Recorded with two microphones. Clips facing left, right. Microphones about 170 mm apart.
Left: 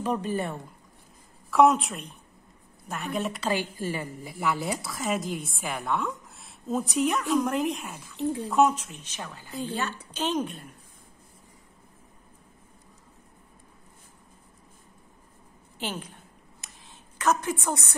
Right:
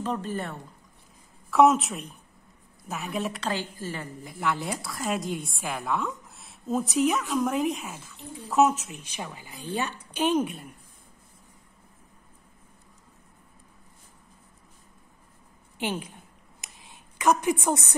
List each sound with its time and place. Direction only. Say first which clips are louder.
0.0 s speech: left 2 dB; 15° left (ahead or behind)
1.5 s a woman's voice: right 1 dB; centre (ahead or behind)
15.8 s a woman's voice: right 4 dB; 10° right (ahead or behind)
16.6 s a sound: right 2 dB; 15° right (ahead or behind)